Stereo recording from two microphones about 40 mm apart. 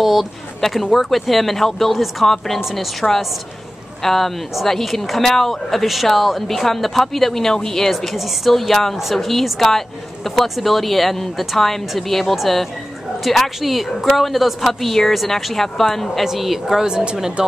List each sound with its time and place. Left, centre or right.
0.0 s a woman's voice: centre
16.3 s speech: centre
16.8 s speech: right